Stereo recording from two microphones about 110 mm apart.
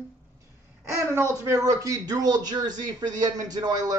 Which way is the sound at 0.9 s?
25° right (ahead or behind).